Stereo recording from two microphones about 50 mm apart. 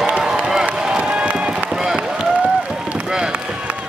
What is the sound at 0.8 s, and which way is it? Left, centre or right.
Run, centre.